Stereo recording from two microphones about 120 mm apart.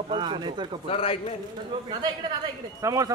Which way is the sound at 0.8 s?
50° left (ahead or behind).